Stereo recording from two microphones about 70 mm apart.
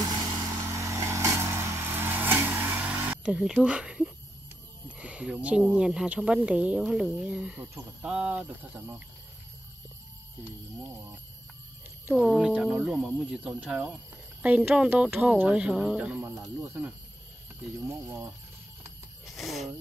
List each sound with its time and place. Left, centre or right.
0.0 s vehicle: right; by 3.2 s centre
3.3 s speech: centre
4.8 s a sound: centre
5.6 s speech: centre
12.2 s speech: centre
17.8 s speech: right
19.2 s speech: centre